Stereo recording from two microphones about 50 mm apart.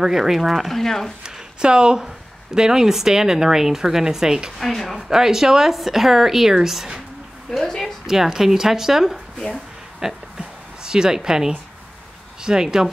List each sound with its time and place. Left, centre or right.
0.0 s speech: centre
1.2 s a sound: centre
2.0 s speech: centre
4.6 s speech: centre
5.1 s speech: centre
7.5 s a woman's voice: centre
8.1 s speech: centre
9.5 s a sound: centre
10.8 s speech: centre